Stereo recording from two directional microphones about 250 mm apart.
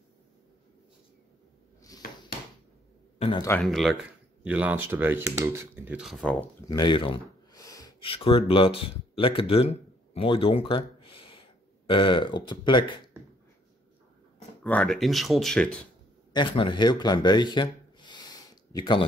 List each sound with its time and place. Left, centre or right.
3.2 s a sound: centre
3.4 s speech: centre
6.7 s speech: centre
14.6 s speech: centre
16.3 s speech: centre